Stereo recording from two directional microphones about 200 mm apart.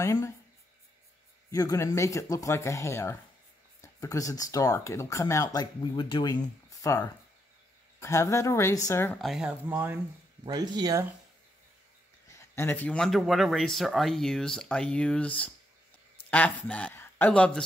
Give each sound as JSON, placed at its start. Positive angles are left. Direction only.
{"t": 0.0, "sound": "speech", "side_deg": 15}
{"t": 1.5, "sound": "speech", "side_deg": 15}
{"t": 9.2, "sound": "speech", "side_deg": -5}
{"t": 12.3, "sound": "speech", "side_deg": 15}